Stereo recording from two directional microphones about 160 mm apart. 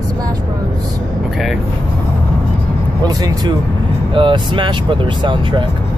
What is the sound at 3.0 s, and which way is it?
Speech, 25° right (ahead or behind).